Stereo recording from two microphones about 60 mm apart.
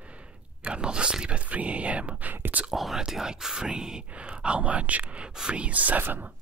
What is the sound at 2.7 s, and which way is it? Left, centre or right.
Whispering, centre.